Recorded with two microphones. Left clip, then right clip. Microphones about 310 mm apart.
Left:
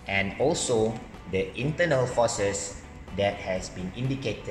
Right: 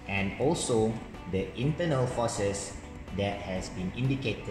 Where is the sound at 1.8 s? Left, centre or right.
Left.